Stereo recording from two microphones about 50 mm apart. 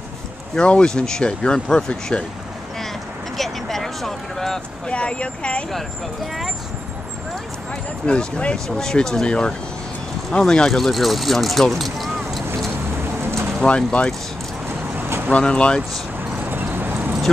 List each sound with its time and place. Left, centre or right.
0.6 s speech: centre
3.3 s a sound: centre
4.8 s speech: left
8.1 s speech: left
10.7 s speech: centre
13.2 s boat: right
13.7 s speech: centre
15.2 s speech: left
16.4 s clip-clop: right